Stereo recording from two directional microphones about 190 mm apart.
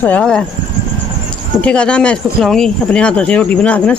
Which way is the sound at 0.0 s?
5° left (ahead or behind).